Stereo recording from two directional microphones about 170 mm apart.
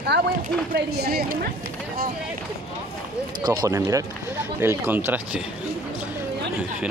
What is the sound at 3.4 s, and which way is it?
Speech, 20° right (ahead or behind).